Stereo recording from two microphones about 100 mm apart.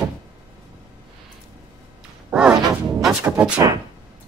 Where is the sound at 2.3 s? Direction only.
10° right (ahead or behind).